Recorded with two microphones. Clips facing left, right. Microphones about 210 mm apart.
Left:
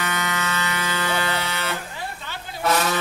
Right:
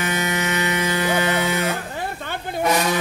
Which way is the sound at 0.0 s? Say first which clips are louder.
Right 4 dB; 20° right (ahead or behind).